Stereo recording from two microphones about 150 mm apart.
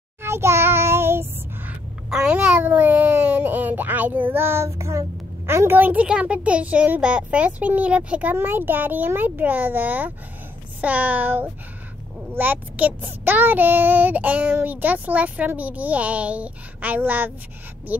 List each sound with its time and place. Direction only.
0.2 s child singing: 15° right (ahead or behind)
1.7 s a child's voice: 5° right (ahead or behind)